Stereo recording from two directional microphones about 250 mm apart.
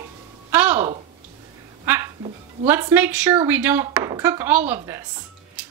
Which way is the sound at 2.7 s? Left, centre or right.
Centre.